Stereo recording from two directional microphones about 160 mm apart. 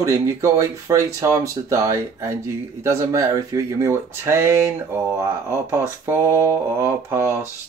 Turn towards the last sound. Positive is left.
turn(degrees=-15)  # may be behind; listen again after turning